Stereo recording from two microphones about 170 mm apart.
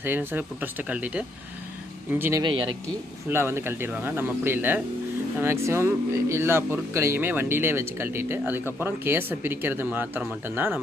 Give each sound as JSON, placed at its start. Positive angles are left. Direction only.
{"t": 0.0, "sound": "speech", "side_deg": -10}
{"t": 2.4, "sound": "speech", "side_deg": -30}
{"t": 3.3, "sound": "speech", "side_deg": -15}